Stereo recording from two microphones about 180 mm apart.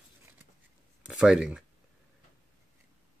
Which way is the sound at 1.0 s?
5° right (ahead or behind).